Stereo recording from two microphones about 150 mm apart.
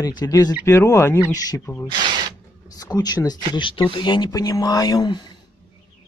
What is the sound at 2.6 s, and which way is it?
Speech, 25° left (ahead or behind).